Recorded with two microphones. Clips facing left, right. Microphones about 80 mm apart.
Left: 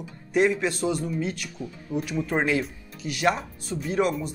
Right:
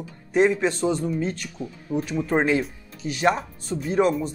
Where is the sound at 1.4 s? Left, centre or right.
Right.